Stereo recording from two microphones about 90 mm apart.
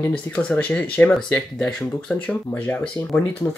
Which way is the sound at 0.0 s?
15° left (ahead or behind).